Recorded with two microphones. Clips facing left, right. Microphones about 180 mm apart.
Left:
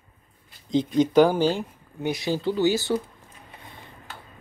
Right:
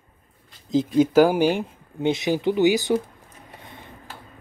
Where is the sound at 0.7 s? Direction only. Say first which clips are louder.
Right 2 dB; 5° right (ahead or behind).